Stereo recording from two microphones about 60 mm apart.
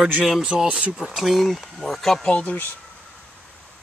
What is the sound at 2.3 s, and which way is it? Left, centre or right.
Speech, left.